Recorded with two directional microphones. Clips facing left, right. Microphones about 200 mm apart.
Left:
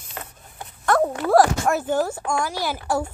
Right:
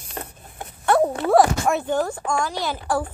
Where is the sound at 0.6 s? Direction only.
30° right (ahead or behind).